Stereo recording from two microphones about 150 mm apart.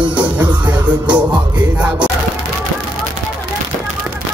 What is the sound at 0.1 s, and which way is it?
Music, 10° right (ahead or behind).